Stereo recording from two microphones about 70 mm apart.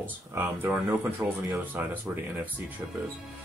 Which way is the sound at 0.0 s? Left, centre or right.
Right.